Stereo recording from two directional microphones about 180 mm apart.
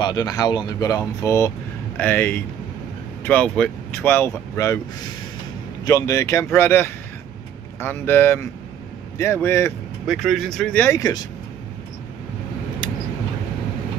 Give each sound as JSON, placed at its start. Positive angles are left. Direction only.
{"t": 0.0, "sound": "speech", "side_deg": 20}
{"t": 10.0, "sound": "speech", "side_deg": 0}